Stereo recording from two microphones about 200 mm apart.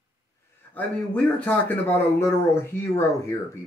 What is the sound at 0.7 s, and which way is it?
Speech, 5° left (ahead or behind).